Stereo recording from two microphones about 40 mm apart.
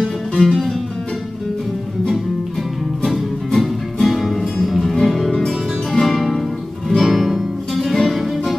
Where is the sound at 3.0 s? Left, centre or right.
Centre.